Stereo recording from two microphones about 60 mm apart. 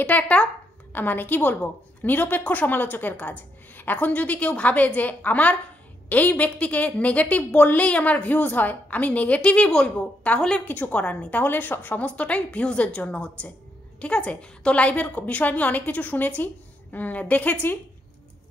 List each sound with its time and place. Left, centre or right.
0.0 s a woman's voice: left
0.9 s a woman's voice: left
11.0 s a woman's voice: centre
12.0 s a woman's voice: left